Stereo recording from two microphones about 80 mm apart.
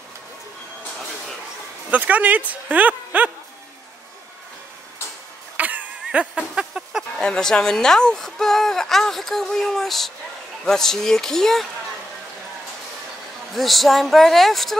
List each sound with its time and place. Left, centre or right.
1.9 s speech: centre
5.6 s a sound: centre
7.2 s speech: centre
13.6 s speech: centre